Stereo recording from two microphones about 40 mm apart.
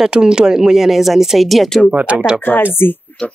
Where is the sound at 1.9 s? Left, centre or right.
Right.